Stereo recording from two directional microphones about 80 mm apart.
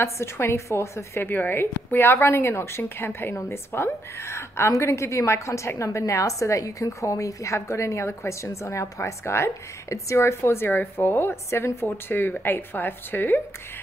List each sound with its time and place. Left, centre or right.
0.0 s a woman's voice: left